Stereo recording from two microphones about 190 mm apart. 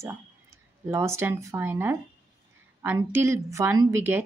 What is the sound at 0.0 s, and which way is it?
Speech, 15° right (ahead or behind).